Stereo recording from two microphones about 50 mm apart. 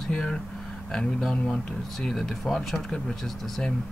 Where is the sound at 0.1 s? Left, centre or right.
Centre.